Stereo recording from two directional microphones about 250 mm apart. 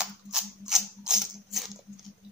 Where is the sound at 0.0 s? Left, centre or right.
Centre.